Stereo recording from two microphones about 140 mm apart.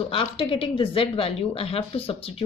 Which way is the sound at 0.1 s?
40° left (ahead or behind).